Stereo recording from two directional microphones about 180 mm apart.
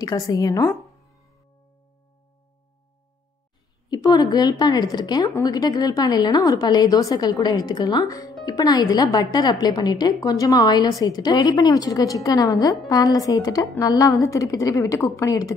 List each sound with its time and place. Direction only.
0.0 s a woman's voice: 20° left (ahead or behind)
3.9 s a woman's voice: 20° left (ahead or behind)